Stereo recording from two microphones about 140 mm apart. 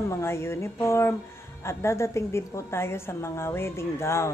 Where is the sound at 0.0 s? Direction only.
20° left (ahead or behind).